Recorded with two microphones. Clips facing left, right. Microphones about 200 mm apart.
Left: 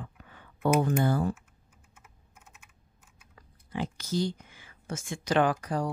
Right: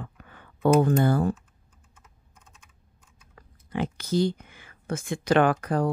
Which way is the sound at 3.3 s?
60° right (ahead or behind).